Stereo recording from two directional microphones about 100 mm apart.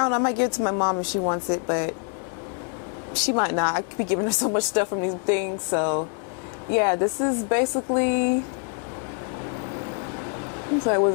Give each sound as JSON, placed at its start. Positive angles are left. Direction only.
{"t": 0.0, "sound": "speech", "side_deg": 15}
{"t": 3.3, "sound": "speech", "side_deg": 15}